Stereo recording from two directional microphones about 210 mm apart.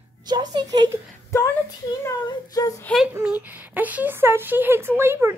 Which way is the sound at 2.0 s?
15° left (ahead or behind).